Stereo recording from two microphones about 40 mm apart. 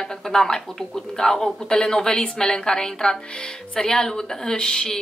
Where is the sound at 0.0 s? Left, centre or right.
Centre.